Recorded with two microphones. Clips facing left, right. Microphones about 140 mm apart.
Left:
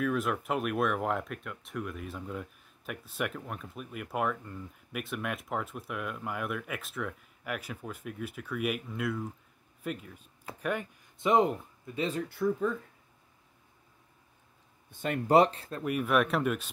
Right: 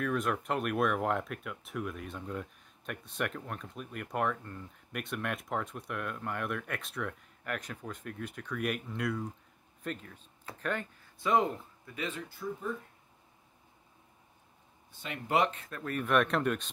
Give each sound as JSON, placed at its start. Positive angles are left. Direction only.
{"t": 0.0, "sound": "speech", "side_deg": 0}
{"t": 11.1, "sound": "speech", "side_deg": 20}
{"t": 12.3, "sound": "speech", "side_deg": 80}
{"t": 14.9, "sound": "speech", "side_deg": 50}
{"t": 15.8, "sound": "speech", "side_deg": 10}